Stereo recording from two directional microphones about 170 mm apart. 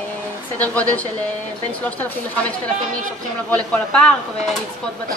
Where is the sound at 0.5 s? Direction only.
10° left (ahead or behind).